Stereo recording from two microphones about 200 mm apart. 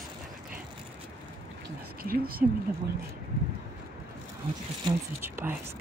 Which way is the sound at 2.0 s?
45° right (ahead or behind).